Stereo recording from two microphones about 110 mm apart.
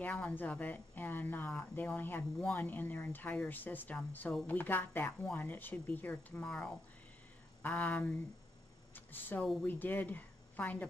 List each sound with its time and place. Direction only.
0.0 s a woman's voice: 15° left (ahead or behind)
8.9 s a sound: 15° left (ahead or behind)
9.7 s speech: 15° left (ahead or behind)